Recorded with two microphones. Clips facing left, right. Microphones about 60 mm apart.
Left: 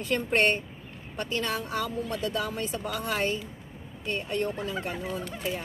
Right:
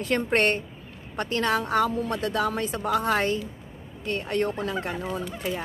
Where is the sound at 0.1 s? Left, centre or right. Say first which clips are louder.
Right 2 dB; right.